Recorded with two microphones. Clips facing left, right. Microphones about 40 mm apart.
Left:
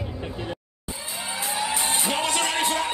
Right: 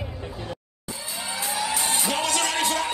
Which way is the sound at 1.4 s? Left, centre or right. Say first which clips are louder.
Even; left.